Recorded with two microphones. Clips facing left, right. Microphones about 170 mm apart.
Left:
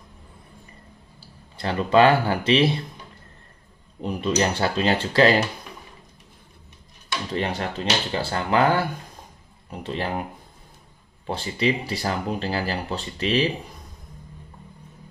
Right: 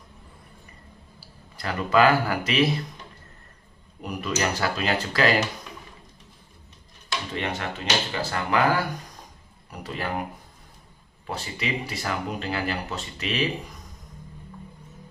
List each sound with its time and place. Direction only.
1.6 s speech: 30° left (ahead or behind)
4.0 s speech: 25° left (ahead or behind)
7.3 s speech: 35° left (ahead or behind)
11.2 s speech: 30° left (ahead or behind)